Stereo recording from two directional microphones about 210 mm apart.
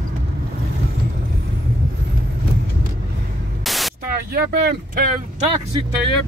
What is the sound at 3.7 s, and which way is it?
Static, centre (ahead or behind).